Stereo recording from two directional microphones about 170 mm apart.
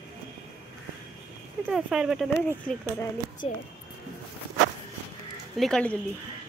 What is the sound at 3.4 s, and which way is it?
Speech, 35° left (ahead or behind).